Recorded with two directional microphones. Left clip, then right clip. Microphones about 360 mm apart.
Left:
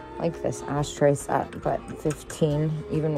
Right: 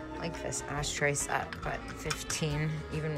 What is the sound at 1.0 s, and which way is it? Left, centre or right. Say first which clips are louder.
Speech: left 10 dB; left.